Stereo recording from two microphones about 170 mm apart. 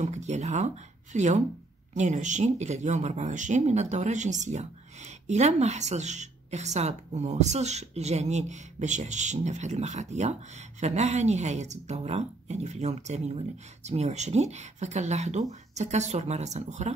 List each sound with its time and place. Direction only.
0.0 s speech: 45° right (ahead or behind)